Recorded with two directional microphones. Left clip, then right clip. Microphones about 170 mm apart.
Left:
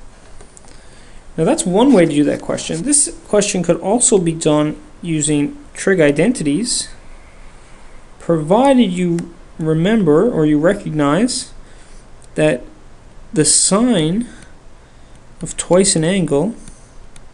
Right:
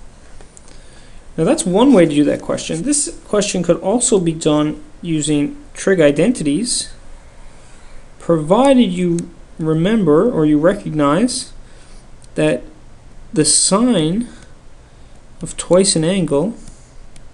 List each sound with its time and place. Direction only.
1.3 s speech: 10° left (ahead or behind)
8.2 s speech: 10° left (ahead or behind)
15.4 s speech: 15° left (ahead or behind)